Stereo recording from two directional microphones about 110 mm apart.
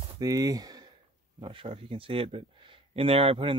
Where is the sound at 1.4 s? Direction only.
50° right (ahead or behind).